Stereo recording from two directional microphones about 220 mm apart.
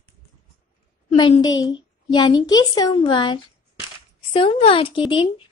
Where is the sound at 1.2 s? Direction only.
25° left (ahead or behind).